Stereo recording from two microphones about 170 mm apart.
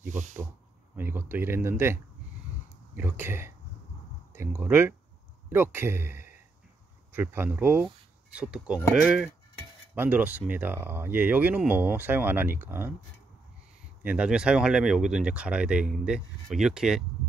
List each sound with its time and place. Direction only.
0.1 s speech: 45° right (ahead or behind)
0.9 s speech: 10° right (ahead or behind)
3.0 s speech: 10° right (ahead or behind)
14.0 s speech: 5° right (ahead or behind)